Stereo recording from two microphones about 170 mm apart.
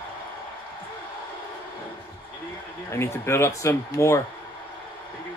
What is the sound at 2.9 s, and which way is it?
Speech, 15° left (ahead or behind).